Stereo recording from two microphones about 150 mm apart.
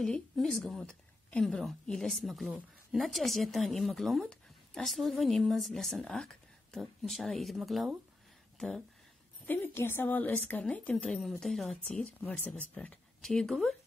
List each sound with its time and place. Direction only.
0.0 s a woman's voice: 5° left (ahead or behind)
9.5 s a woman's voice: 15° left (ahead or behind)